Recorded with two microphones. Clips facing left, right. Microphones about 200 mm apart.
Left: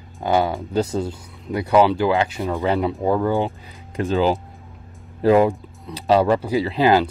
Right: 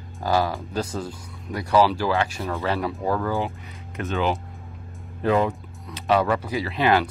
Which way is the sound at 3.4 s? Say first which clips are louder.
Left 3 dB; 30° left (ahead or behind).